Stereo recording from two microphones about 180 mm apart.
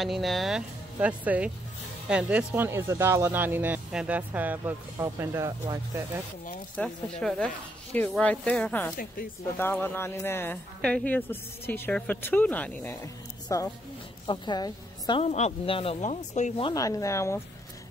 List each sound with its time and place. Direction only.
0.0 s speech: centre (ahead or behind)
6.8 s a woman's voice: 5° left (ahead or behind); by 15.2 s 25° left (ahead or behind)
15.2 s speech: 40° left (ahead or behind)
16.6 s speech: 20° left (ahead or behind)